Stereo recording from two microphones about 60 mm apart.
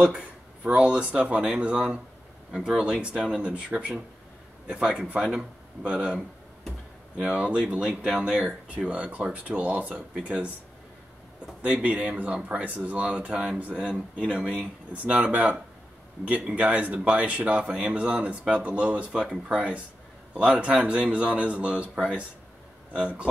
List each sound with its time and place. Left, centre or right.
0.0 s speech: centre
5.2 s speech: centre
11.6 s speech: right
13.7 s speech: centre
14.9 s speech: right
16.5 s speech: right